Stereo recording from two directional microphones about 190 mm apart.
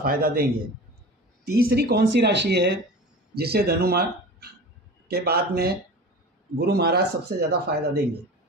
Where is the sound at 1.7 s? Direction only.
60° right (ahead or behind).